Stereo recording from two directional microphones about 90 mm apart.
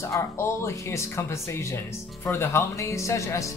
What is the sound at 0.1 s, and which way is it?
Speech, 30° left (ahead or behind).